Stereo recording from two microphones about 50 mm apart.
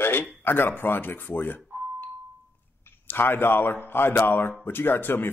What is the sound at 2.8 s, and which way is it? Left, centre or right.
Speech, left.